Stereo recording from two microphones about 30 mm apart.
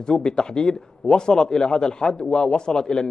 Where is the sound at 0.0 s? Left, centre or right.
Left.